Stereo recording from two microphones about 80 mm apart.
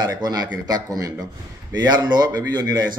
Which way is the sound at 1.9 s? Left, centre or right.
Right.